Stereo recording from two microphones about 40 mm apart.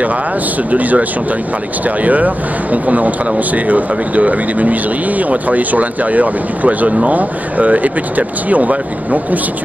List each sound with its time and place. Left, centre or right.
0.7 s speech: right